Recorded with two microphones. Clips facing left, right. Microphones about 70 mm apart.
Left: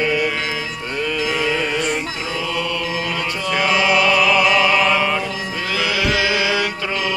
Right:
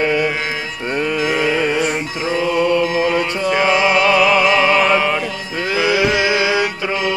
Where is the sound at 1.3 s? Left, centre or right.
Centre.